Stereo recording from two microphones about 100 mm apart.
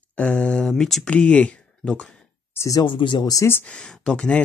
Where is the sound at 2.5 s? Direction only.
30° left (ahead or behind).